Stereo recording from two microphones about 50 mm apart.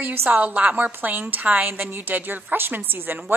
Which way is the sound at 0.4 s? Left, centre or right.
Right.